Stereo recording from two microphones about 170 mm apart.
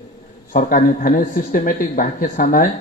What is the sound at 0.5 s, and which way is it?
Speech, 55° left (ahead or behind).